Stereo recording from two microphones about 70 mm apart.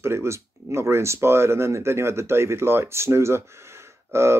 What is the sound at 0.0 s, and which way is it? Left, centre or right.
Speech, right.